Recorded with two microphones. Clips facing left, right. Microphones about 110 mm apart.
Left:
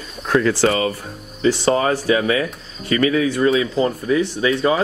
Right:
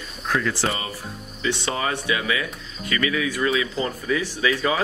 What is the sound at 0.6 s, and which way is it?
Speech, 90° left.